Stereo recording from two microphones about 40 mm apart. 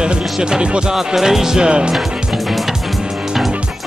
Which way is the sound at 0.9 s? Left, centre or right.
Centre.